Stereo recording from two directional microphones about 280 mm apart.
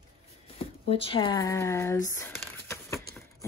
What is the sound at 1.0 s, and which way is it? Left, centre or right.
Speech, centre.